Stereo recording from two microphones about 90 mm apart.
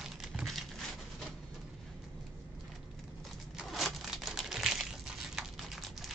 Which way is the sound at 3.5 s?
5° right (ahead or behind).